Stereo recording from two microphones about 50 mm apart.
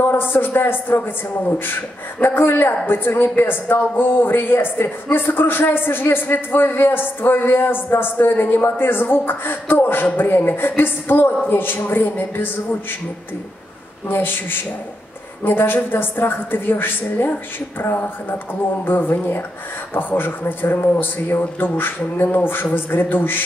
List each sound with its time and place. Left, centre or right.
0.0 s a woman's voice: left
14.0 s a woman's voice: left